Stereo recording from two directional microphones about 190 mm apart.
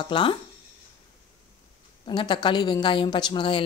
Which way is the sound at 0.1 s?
25° left (ahead or behind).